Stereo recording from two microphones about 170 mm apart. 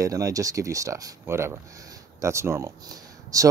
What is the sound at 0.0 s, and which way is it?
Speech, 20° right (ahead or behind).